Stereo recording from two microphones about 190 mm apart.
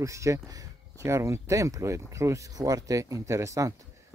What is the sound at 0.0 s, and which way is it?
Speech, 15° right (ahead or behind).